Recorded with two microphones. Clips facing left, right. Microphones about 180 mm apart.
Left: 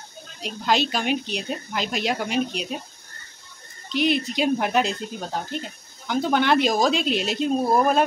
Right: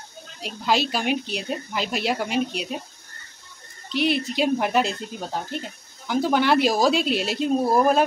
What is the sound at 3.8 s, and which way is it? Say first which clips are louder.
Speech: left 1 dB; 5° right (ahead or behind).